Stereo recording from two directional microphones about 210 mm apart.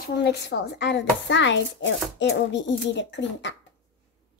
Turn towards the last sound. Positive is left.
turn(degrees=55)  # may be behind; listen again after turning